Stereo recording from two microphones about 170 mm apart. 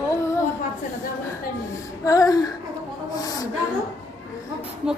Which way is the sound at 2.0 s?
20° left (ahead or behind).